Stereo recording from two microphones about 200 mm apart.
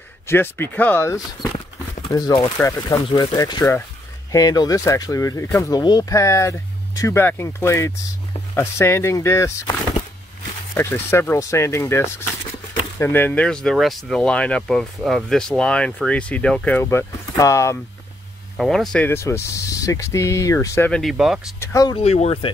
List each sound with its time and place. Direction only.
0.3 s speech: 10° left (ahead or behind)
10.7 s speech: 10° left (ahead or behind)
18.6 s speech: centre (ahead or behind)
21.5 s speech: 20° left (ahead or behind)
22.0 s speech: 30° left (ahead or behind)